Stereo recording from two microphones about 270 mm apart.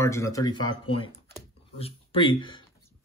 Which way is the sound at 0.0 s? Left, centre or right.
Centre.